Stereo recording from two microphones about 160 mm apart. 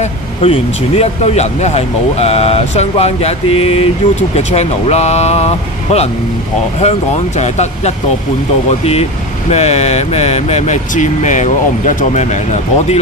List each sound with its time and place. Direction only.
0.0 s speech: 40° left (ahead or behind)
9.5 s speech: 45° left (ahead or behind)